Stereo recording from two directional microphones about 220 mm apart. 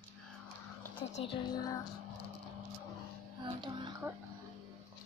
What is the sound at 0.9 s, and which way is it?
Speech, 25° left (ahead or behind).